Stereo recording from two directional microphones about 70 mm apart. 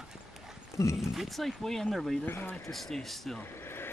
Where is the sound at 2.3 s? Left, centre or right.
Left.